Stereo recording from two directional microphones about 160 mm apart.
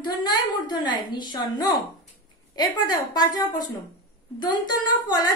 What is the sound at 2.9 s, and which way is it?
A woman's voice, 25° left (ahead or behind).